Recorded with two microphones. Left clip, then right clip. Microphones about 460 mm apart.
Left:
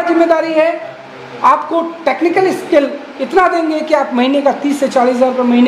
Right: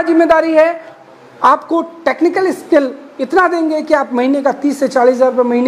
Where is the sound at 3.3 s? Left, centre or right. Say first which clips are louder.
Left 1 dB; right.